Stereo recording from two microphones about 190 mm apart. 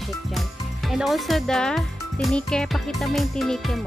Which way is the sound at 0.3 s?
Centre (ahead or behind).